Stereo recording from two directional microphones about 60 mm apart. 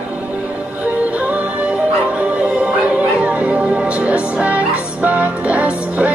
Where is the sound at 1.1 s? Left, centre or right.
Right.